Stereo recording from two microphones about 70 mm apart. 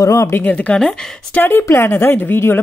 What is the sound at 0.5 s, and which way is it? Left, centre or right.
Speech, centre.